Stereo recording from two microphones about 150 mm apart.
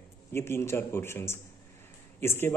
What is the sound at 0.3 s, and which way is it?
A man's voice, 15° left (ahead or behind).